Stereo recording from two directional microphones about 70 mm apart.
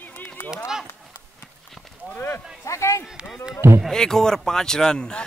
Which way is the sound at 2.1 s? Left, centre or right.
Left.